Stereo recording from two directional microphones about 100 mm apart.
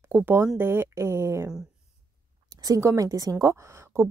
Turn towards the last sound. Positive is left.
turn(degrees=-30)  # may be behind; listen again after turning